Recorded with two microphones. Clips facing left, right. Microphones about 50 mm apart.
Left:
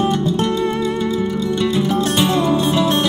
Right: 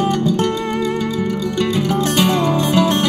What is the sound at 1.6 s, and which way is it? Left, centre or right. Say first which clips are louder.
Music: even; right.